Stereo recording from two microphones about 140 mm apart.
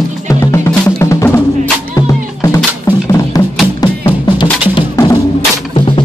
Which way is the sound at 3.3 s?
25° left (ahead or behind).